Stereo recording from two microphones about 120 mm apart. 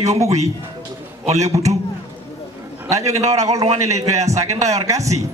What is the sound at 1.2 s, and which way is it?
Speech, 70° right (ahead or behind).